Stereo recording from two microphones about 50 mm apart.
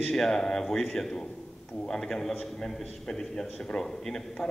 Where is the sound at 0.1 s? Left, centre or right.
Centre.